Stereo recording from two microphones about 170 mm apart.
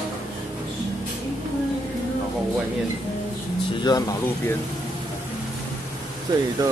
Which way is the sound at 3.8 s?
20° left (ahead or behind).